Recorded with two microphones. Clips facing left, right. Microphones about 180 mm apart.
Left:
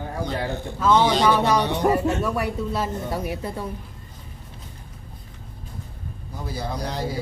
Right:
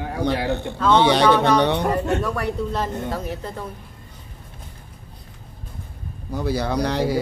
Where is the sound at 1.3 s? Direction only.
10° left (ahead or behind).